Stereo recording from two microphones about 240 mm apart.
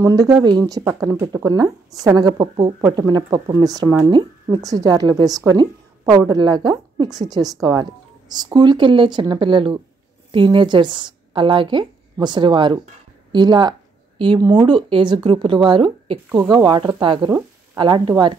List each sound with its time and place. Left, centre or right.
0.0 s speech: centre